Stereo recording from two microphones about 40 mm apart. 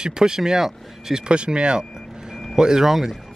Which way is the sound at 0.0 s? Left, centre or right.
Centre.